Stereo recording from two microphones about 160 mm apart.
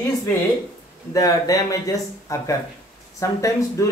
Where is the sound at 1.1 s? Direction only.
20° left (ahead or behind).